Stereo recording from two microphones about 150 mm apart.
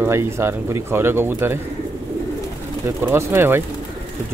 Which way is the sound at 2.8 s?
15° right (ahead or behind).